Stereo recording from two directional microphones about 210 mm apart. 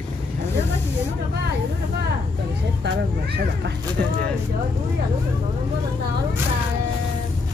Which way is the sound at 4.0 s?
40° right (ahead or behind).